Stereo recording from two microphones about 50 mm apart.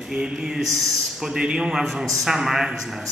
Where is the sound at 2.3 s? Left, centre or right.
Centre.